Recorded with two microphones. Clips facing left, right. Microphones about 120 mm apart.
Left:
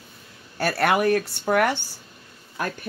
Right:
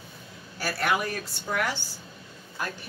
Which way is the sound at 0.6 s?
65° left (ahead or behind).